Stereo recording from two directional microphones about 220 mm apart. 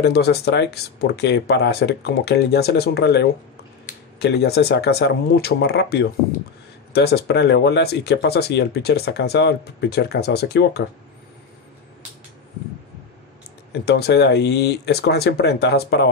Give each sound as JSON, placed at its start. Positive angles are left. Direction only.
{"t": 0.0, "sound": "speech", "side_deg": 45}
{"t": 13.8, "sound": "speech", "side_deg": 45}